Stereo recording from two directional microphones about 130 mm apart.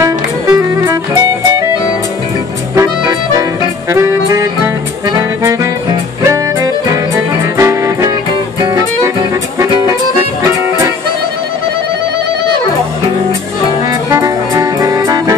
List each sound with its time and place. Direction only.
0.0 s music: 25° right (ahead or behind)
2.7 s accordion: 25° right (ahead or behind)
5.4 s music: 20° right (ahead or behind)
9.6 s music: 25° right (ahead or behind)
13.8 s music: 20° right (ahead or behind)